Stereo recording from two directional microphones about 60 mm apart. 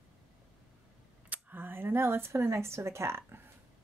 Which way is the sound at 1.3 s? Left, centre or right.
Right.